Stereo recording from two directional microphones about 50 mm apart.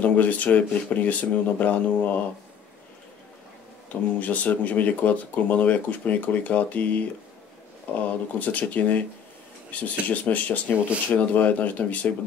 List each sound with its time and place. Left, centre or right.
0.0 s speech: left
3.9 s speech: left